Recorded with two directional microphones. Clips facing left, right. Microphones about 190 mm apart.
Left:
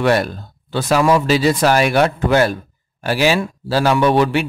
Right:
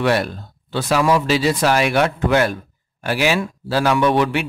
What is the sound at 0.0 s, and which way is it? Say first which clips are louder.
A man's voice: left 2 dB; 45° left (ahead or behind).